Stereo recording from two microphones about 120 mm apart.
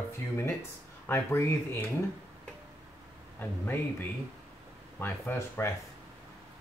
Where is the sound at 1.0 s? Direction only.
20° left (ahead or behind).